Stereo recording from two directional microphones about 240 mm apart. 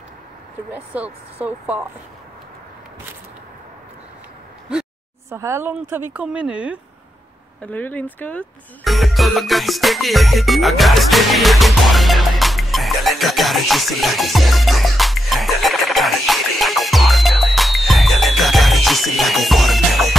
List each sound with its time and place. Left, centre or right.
0.7 s speech: centre
5.3 s speech: centre
7.6 s music: centre